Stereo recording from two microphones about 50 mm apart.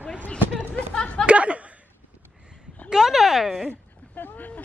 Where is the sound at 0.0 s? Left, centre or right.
Left.